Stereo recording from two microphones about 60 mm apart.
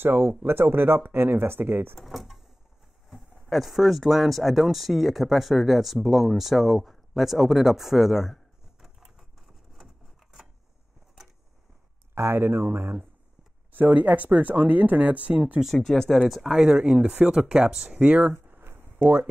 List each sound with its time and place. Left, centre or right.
0.0 s speech: right
2.0 s speech: centre
8.8 s a sound: centre
12.2 s speech: right
13.7 s speech: right
15.6 s speech: centre
18.0 s speech: centre
18.3 s a sound: right